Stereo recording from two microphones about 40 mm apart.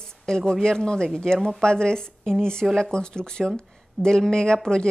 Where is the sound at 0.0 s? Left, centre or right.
Centre.